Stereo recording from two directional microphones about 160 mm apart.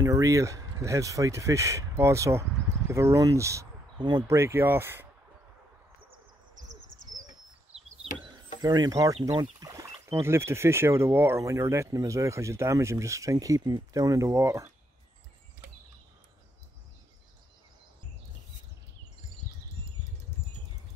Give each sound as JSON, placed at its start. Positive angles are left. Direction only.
{"t": 0.0, "sound": "speech", "side_deg": -20}
{"t": 8.5, "sound": "speech", "side_deg": -25}